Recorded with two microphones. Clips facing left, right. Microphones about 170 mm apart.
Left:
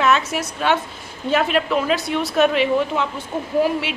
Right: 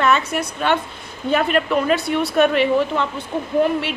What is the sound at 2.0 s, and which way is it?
Speech, 60° right (ahead or behind).